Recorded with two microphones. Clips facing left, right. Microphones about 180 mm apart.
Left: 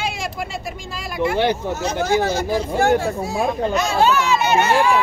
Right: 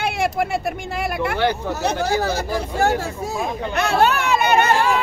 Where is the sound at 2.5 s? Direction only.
40° right (ahead or behind).